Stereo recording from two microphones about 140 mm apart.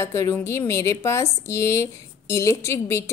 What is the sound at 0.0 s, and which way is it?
A woman's voice, 20° left (ahead or behind).